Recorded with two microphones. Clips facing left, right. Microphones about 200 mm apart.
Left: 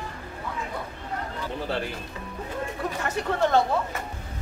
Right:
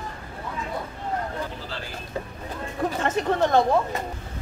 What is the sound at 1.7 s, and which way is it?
Bird, 60° left (ahead or behind).